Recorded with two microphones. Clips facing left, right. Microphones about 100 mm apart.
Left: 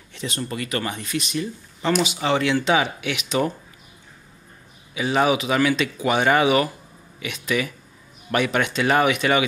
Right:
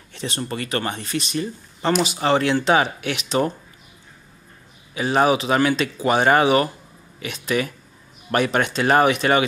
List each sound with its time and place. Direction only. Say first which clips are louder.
0.1 s speech: right 1 dB; 35° right (ahead or behind)
4.9 s speech: right 2 dB; 40° right (ahead or behind)